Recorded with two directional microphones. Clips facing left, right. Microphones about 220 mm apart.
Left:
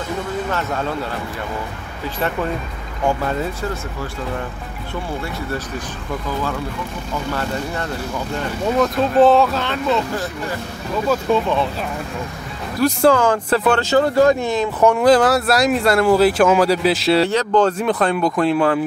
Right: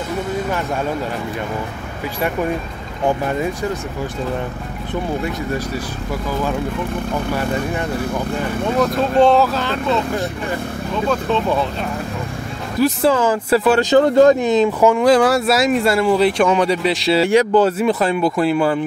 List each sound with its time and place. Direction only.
3.1 s speech: 15° right (ahead or behind)
8.9 s speech: centre (ahead or behind)
12.8 s speech: 5° right (ahead or behind)
13.7 s speech: 15° right (ahead or behind)
14.8 s speech: centre (ahead or behind)
17.3 s speech: 10° right (ahead or behind)